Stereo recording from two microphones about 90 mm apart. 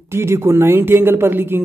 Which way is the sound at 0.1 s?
30° right (ahead or behind).